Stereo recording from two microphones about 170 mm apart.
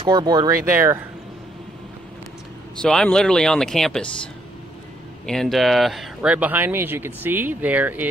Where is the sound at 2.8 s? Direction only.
5° left (ahead or behind).